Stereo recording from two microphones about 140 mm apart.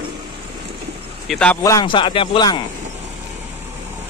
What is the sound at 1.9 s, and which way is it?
Speech, 35° left (ahead or behind).